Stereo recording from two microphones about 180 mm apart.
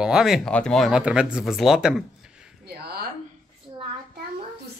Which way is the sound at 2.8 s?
60° right (ahead or behind).